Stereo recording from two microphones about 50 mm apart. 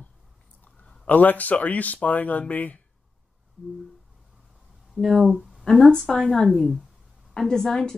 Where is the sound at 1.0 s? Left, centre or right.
Left.